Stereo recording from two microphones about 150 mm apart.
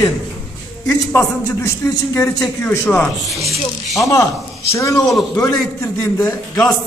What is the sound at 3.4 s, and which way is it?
Speech, centre (ahead or behind).